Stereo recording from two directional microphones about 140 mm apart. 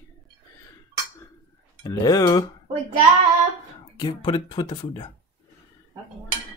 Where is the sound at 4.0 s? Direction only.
35° left (ahead or behind).